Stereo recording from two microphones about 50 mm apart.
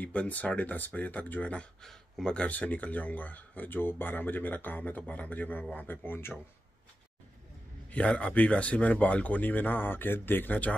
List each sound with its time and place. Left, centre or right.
0.0 s speech: left
1.8 s speech: centre
2.3 s speech: left
7.9 s speech: left